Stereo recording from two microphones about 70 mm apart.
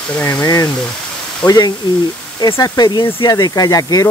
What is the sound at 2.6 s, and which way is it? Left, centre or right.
Speech, left.